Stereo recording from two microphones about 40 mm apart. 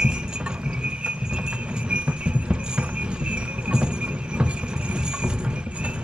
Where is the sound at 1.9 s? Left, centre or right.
Right.